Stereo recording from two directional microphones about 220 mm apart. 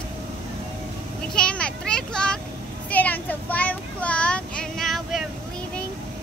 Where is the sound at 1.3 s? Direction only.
5° left (ahead or behind).